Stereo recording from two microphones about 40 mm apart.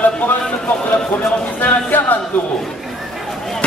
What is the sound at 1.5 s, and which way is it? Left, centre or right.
Music, left.